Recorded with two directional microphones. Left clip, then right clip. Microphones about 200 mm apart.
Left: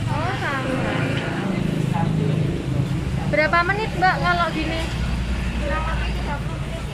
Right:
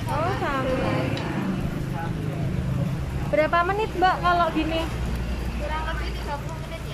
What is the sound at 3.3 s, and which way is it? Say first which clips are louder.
Speech: left 2 dB; 15° right (ahead or behind).